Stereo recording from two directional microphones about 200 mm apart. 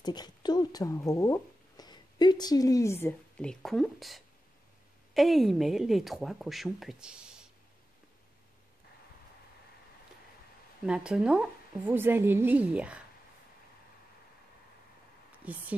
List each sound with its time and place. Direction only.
0.0 s a woman's voice: 20° left (ahead or behind); by 7.4 s 5° right (ahead or behind)
10.9 s a woman's voice: 5° right (ahead or behind)
15.4 s a woman's voice: 5° right (ahead or behind)